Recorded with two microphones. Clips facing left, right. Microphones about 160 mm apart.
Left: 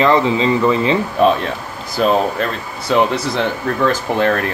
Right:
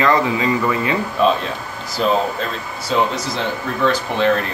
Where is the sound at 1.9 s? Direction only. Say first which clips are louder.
Left 3 dB; 60° left (ahead or behind).